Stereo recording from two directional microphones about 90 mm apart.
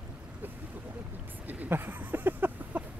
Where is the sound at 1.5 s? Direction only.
20° right (ahead or behind).